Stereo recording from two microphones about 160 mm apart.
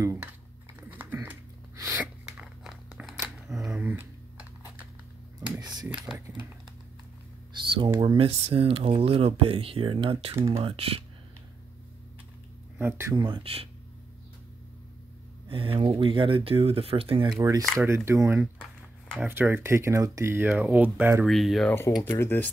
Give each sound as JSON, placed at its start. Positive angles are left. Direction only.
{"t": 0.0, "sound": "speech", "side_deg": -20}
{"t": 0.7, "sound": "typing", "side_deg": -10}
{"t": 1.8, "sound": "sneeze", "side_deg": -15}
{"t": 2.2, "sound": "crumpling", "side_deg": -5}
{"t": 7.9, "sound": "speech", "side_deg": -20}
{"t": 8.2, "sound": "speech", "side_deg": -35}
{"t": 12.7, "sound": "speech", "side_deg": -15}
{"t": 13.2, "sound": "speech", "side_deg": -30}
{"t": 15.4, "sound": "speech", "side_deg": -35}
{"t": 17.4, "sound": "speech", "side_deg": -20}
{"t": 21.3, "sound": "speech", "side_deg": 0}
{"t": 22.1, "sound": "speech", "side_deg": 15}